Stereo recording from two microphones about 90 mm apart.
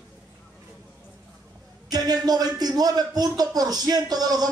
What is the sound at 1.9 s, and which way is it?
A man's voice, 50° right (ahead or behind).